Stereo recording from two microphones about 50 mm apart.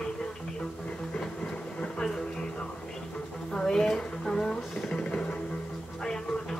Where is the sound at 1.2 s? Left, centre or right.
Centre.